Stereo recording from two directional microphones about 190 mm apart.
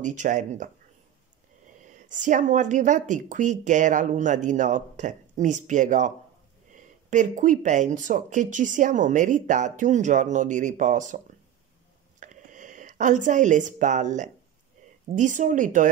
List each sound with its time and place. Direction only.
0.0 s speech: 40° right (ahead or behind)
1.9 s speech: 40° right (ahead or behind)
12.2 s speech: 40° right (ahead or behind)